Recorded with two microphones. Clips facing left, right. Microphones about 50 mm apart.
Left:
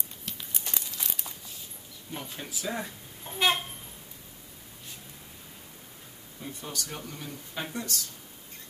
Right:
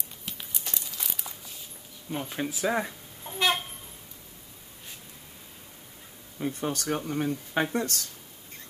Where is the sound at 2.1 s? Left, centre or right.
Right.